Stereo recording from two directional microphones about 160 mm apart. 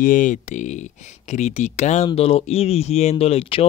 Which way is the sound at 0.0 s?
55° left (ahead or behind).